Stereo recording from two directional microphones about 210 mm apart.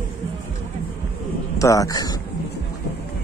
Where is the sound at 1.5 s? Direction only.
15° left (ahead or behind).